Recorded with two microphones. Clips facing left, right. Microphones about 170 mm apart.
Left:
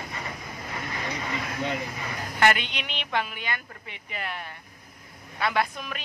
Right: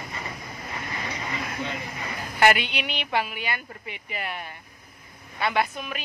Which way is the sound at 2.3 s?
10° right (ahead or behind).